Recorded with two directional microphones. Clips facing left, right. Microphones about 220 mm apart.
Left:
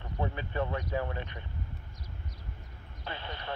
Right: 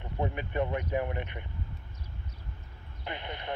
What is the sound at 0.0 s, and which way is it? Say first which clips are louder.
Speech: right 2 dB; 20° right (ahead or behind).